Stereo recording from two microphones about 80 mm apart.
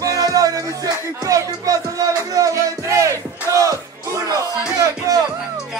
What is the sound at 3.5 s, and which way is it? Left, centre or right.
Battle cry, right.